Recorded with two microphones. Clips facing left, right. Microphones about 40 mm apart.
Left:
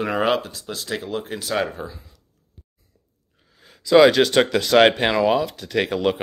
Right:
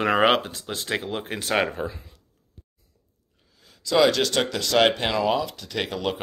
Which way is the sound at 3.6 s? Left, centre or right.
Left.